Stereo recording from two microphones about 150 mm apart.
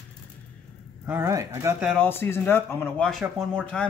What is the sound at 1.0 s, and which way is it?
Speech, 15° right (ahead or behind).